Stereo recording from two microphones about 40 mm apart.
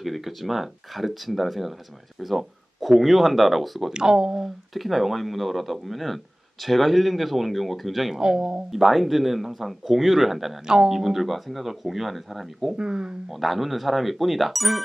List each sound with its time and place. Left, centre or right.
0.0 s speech: centre
3.9 s speech: centre
4.7 s speech: centre
8.2 s speech: centre
8.7 s speech: centre
10.7 s speech: centre
11.0 s speech: centre
12.7 s speech: right
13.3 s speech: centre